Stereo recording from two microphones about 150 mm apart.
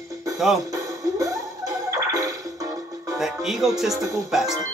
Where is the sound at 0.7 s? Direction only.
20° right (ahead or behind).